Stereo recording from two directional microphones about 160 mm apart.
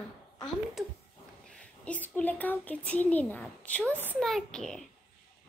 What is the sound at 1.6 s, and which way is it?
A child's voice, 10° left (ahead or behind).